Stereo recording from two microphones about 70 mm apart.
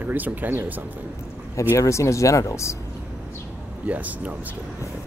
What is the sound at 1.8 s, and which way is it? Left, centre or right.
Speech, left.